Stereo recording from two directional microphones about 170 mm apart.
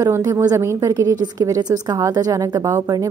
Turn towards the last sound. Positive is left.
turn(degrees=-20)  # may be behind; listen again after turning